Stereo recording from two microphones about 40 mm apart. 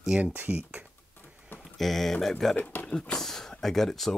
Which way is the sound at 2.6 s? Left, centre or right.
Left.